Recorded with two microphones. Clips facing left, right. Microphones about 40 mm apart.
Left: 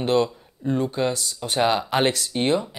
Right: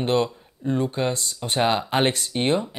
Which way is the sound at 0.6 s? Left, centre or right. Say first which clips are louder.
Even; right.